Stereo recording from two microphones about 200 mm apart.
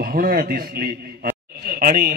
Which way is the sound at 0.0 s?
45° right (ahead or behind).